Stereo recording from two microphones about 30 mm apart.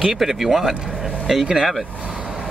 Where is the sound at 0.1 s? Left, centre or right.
Centre.